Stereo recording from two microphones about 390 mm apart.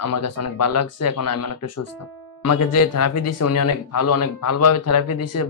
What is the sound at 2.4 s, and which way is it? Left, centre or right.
Speech, left.